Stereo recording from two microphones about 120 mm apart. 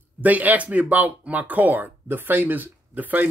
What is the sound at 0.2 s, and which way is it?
Speech, 15° right (ahead or behind).